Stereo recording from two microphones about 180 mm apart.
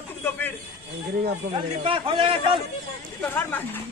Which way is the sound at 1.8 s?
30° right (ahead or behind).